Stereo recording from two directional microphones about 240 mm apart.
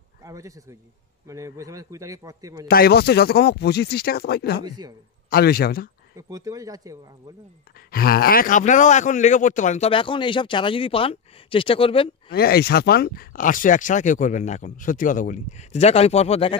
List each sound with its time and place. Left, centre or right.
0.2 s a man's voice: centre
2.7 s speech: left
4.6 s a man's voice: centre
5.3 s speech: left
6.1 s a man's voice: centre
7.9 s a man's voice: left
12.3 s speech: left